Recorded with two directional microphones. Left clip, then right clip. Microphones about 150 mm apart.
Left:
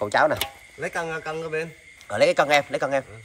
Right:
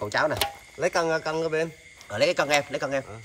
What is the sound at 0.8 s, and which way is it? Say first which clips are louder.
Speech: right 4 dB; 50° right (ahead or behind).